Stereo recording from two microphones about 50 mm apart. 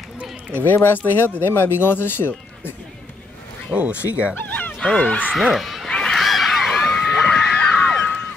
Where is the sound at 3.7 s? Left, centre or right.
Right.